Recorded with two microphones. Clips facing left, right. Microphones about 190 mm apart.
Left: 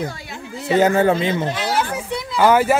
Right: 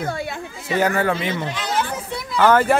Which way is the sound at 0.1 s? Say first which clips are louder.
Right 8 dB; 60° right (ahead or behind).